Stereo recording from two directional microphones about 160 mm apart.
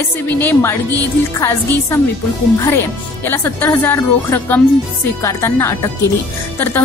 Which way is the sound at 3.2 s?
15° left (ahead or behind).